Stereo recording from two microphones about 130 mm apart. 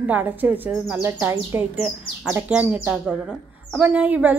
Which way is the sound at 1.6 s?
5° right (ahead or behind).